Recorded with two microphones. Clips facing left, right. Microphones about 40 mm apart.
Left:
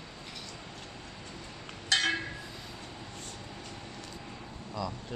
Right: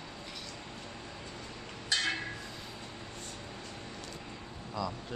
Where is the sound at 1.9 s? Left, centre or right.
Left.